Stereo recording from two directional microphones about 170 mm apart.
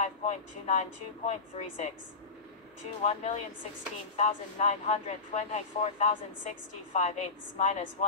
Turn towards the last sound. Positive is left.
turn(degrees=40)  # may be behind; listen again after turning